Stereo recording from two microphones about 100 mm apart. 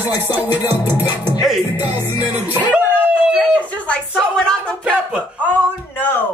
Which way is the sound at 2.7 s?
15° right (ahead or behind).